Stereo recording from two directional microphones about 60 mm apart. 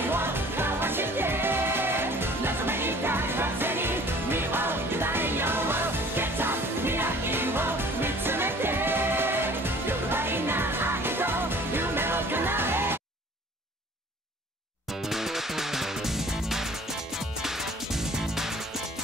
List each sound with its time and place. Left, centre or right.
0.1 s music: right
15.0 s music: centre